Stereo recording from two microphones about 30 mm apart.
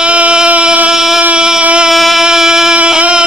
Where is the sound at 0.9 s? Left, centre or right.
Centre.